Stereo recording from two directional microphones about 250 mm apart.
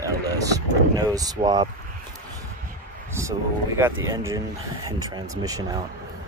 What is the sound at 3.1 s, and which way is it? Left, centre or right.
Speech, centre.